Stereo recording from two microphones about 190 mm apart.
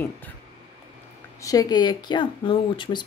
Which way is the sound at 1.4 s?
20° left (ahead or behind).